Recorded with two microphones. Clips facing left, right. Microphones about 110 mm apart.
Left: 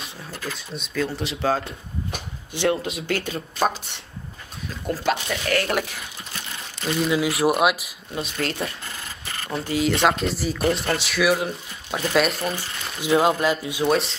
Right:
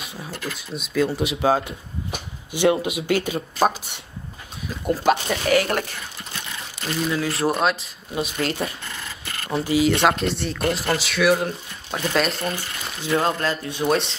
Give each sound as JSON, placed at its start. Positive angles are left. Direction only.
{"t": 0.5, "sound": "speech", "side_deg": -5}
{"t": 5.1, "sound": "speech", "side_deg": -30}
{"t": 5.7, "sound": "speech", "side_deg": 0}
{"t": 8.1, "sound": "speech", "side_deg": -5}